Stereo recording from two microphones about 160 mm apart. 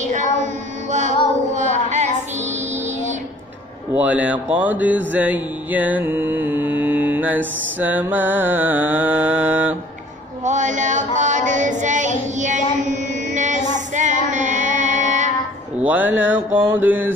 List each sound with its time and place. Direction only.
0.0 s a sound: 50° right (ahead or behind)
0.8 s female singing: 50° right (ahead or behind)
3.9 s speech: 10° right (ahead or behind)
7.8 s mantra: 10° right (ahead or behind)
10.4 s chant: 50° right (ahead or behind)
12.4 s child singing: 50° right (ahead or behind)
12.9 s music: 50° right (ahead or behind)
15.8 s mantra: 10° right (ahead or behind)